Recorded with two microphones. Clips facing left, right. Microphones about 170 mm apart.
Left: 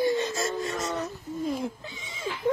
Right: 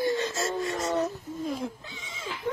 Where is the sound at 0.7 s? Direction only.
30° right (ahead or behind).